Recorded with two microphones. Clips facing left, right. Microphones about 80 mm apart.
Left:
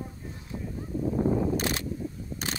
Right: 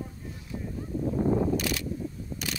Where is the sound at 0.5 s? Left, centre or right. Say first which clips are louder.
Right 1 dB; centre.